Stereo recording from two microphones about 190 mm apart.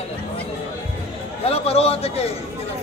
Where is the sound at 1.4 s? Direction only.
30° left (ahead or behind).